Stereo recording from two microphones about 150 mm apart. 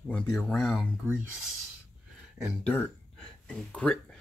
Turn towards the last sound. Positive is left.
turn(degrees=5)  # may be behind; listen again after turning